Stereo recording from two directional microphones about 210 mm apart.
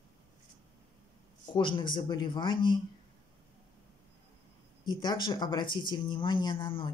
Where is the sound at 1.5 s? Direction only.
25° left (ahead or behind).